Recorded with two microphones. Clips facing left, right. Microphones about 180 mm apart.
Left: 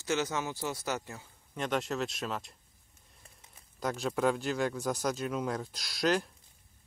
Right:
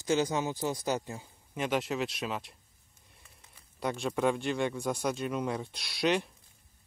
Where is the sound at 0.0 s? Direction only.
15° right (ahead or behind); by 2.5 s centre (ahead or behind).